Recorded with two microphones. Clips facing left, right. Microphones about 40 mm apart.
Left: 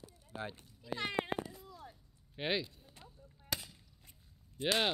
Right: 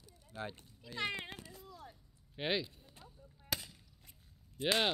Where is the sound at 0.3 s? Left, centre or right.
Centre.